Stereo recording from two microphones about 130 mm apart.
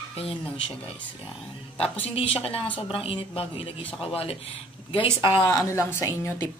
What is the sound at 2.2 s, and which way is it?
Speech, 45° left (ahead or behind).